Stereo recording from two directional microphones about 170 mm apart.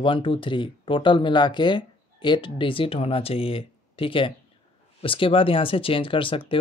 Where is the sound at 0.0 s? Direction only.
30° left (ahead or behind).